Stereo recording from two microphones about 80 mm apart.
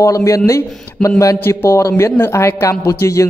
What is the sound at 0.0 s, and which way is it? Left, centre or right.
Speech, left.